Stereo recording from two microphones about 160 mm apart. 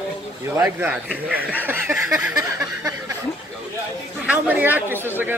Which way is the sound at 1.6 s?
15° right (ahead or behind).